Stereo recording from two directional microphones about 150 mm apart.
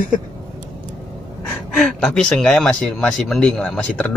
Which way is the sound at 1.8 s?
5° left (ahead or behind).